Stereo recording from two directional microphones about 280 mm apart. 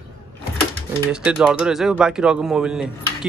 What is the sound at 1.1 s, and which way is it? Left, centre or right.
Speech, centre.